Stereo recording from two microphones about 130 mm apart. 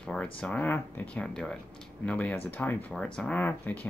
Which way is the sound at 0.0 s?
10° left (ahead or behind).